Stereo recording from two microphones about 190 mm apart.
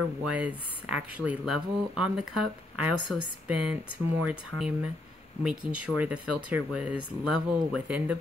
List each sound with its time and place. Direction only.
0.2 s speech: 5° right (ahead or behind)